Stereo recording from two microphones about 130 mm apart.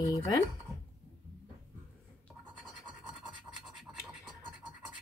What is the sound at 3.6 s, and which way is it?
Scratch, 5° right (ahead or behind).